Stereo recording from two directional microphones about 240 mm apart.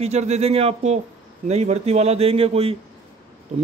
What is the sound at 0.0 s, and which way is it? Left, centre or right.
Speech, right.